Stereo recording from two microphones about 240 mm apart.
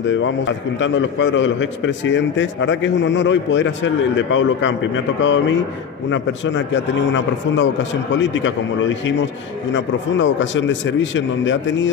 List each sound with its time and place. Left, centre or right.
0.0 s a man's voice: left